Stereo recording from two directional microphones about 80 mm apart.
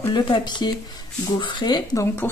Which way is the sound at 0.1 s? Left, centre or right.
Left.